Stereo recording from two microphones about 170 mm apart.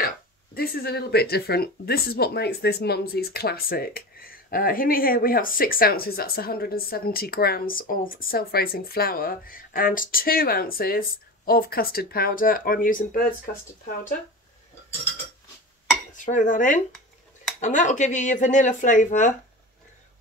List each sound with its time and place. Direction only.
0.6 s speech: 70° left (ahead or behind); by 13.2 s 55° left (ahead or behind)
16.2 s speech: 50° left (ahead or behind)